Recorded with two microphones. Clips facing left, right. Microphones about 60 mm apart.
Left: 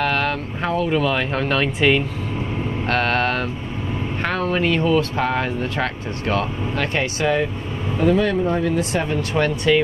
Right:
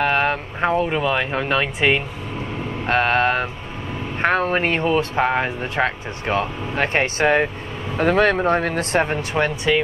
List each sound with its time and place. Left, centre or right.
0.0 s speech: right
4.2 s speech: right
6.8 s speech: right
8.0 s speech: right
9.3 s speech: centre